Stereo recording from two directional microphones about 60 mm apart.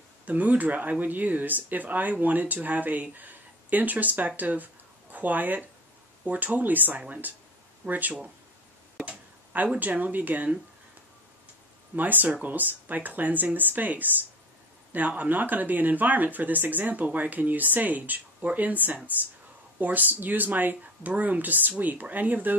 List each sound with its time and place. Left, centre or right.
0.2 s speech: right
9.0 s a sound: right
9.8 s speech: right
11.9 s speech: right